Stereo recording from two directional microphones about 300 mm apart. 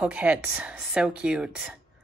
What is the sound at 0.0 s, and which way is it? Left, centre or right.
A woman's voice, centre.